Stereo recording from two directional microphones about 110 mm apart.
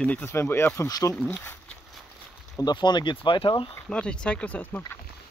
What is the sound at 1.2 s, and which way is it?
Speech, 15° left (ahead or behind).